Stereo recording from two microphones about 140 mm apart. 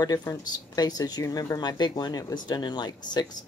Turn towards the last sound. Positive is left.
turn(degrees=30)  # may be behind; listen again after turning